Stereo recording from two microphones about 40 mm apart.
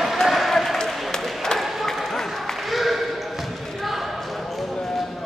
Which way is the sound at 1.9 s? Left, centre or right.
Centre.